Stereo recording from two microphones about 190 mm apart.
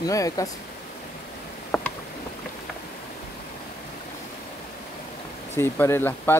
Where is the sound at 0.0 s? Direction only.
15° left (ahead or behind).